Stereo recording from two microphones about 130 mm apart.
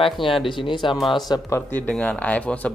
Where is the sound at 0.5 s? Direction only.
40° left (ahead or behind).